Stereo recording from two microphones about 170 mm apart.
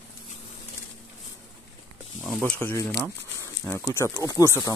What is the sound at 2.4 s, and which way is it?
Speech, 10° left (ahead or behind).